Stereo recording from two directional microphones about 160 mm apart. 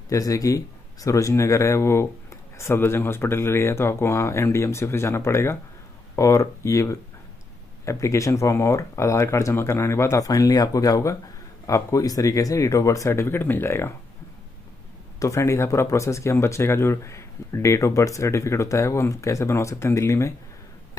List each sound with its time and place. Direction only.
0.1 s speech: 20° left (ahead or behind)
15.1 s speech: 20° left (ahead or behind)